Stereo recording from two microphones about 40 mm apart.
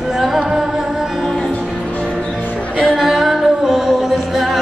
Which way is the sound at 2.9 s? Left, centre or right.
Centre.